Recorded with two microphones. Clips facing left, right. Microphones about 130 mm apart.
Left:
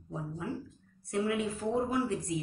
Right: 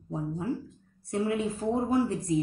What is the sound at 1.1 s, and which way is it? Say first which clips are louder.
Speech: right 3 dB; 35° right (ahead or behind).